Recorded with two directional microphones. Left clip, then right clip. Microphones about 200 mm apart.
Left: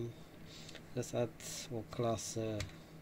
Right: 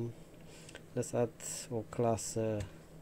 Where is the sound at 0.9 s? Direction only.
30° right (ahead or behind).